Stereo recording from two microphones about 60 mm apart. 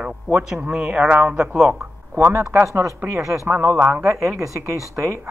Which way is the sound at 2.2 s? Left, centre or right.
Right.